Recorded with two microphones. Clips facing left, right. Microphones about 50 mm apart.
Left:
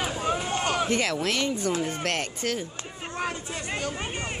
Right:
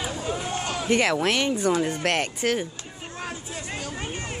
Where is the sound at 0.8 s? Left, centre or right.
Right.